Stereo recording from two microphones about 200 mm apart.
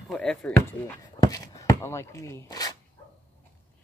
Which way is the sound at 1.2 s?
20° left (ahead or behind).